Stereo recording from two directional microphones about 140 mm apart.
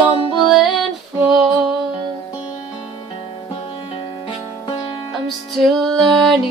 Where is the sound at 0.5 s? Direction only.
Centre (ahead or behind).